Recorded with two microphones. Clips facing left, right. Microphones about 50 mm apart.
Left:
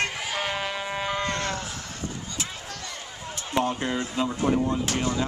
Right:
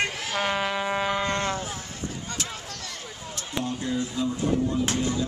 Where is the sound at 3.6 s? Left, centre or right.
Left.